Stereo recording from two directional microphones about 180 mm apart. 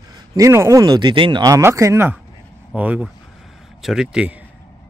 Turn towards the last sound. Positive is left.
turn(degrees=-5)  # may be behind; listen again after turning